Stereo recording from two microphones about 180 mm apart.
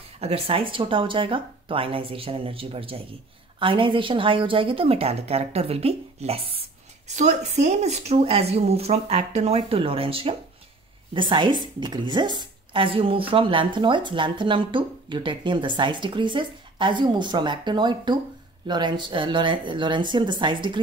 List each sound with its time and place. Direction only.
0.2 s speech: 30° right (ahead or behind)